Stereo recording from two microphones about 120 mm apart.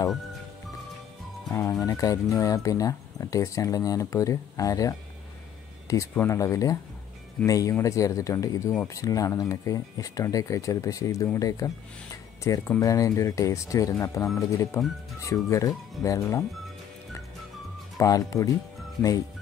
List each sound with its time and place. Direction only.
1.5 s speech: 25° left (ahead or behind)
17.9 s speech: 30° left (ahead or behind)